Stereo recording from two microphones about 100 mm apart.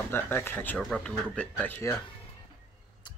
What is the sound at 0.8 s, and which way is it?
Speech, 10° left (ahead or behind).